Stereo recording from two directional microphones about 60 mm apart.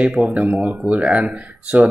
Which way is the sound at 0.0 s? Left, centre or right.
Right.